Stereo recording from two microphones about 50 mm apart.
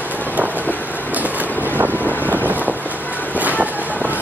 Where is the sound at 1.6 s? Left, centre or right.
Right.